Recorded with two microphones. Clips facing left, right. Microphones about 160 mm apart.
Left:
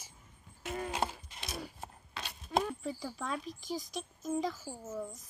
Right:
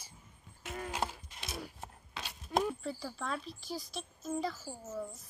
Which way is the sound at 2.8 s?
10° left (ahead or behind).